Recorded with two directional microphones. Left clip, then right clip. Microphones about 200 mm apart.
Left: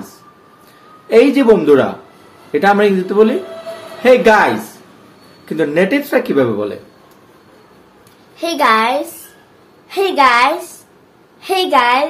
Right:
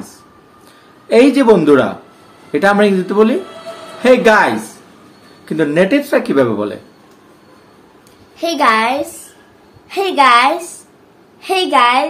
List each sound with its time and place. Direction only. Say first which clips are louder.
1.0 s speech: even; 20° right (ahead or behind)
8.4 s a woman's voice: even; centre (ahead or behind)